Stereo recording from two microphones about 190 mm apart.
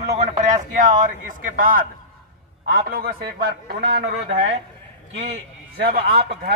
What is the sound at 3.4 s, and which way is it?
A man's voice, 60° right (ahead or behind).